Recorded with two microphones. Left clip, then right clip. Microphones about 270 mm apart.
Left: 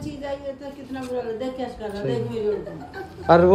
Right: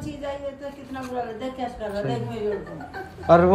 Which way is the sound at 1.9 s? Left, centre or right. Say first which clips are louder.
Left 2 dB; centre.